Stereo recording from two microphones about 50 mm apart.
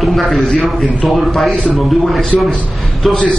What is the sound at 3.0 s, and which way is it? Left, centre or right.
Speech, centre.